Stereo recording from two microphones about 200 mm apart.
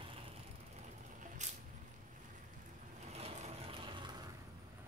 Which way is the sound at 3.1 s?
30° right (ahead or behind).